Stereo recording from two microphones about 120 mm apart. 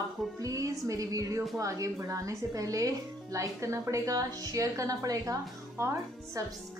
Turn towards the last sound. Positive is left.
turn(degrees=-25)  # may be behind; listen again after turning